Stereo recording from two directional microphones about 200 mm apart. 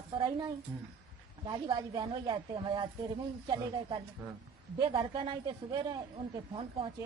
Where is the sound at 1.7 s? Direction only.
25° right (ahead or behind).